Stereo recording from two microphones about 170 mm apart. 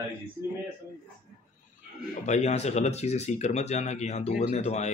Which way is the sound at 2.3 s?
40° left (ahead or behind).